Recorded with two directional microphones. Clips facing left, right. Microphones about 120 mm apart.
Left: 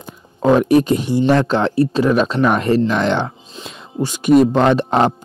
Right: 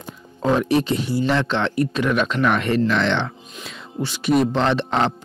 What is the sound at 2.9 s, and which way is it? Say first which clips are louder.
Music: left 3 dB; 40° left (ahead or behind).